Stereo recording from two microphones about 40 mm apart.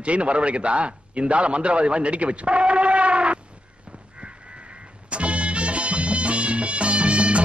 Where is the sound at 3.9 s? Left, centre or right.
Right.